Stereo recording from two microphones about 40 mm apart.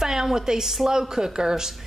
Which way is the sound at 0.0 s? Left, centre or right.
Centre.